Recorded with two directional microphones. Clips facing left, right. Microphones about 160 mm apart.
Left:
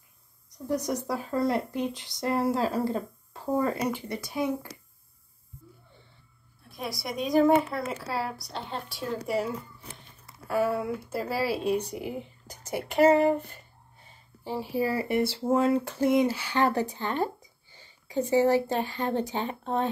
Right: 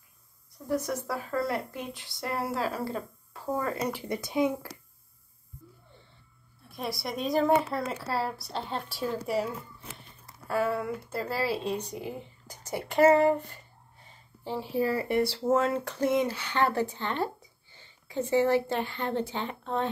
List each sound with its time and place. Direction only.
0.7 s speech: 20° left (ahead or behind)
4.1 s speech: 15° right (ahead or behind)
6.8 s speech: centre (ahead or behind)
10.5 s speech: 5° left (ahead or behind)
14.4 s speech: 5° left (ahead or behind)
16.9 s a sound: 10° left (ahead or behind)
18.7 s speech: 40° left (ahead or behind)